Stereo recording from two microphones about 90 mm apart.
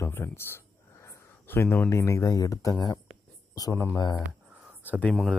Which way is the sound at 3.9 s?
50° left (ahead or behind).